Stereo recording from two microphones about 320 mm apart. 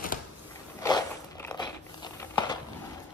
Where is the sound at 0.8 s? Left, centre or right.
Centre.